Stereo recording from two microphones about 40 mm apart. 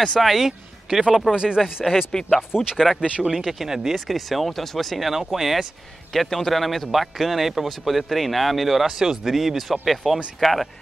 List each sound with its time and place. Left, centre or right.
0.2 s a man's voice: centre
0.5 s speech: centre
1.3 s speech: right
1.6 s speech: centre
3.3 s speech: centre
4.1 s a man's voice: centre
6.1 s a man's voice: centre
8.9 s a man's voice: centre